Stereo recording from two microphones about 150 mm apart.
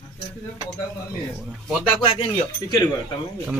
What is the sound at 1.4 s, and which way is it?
Speech, 5° right (ahead or behind).